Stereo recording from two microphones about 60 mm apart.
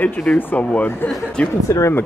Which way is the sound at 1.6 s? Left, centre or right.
Left.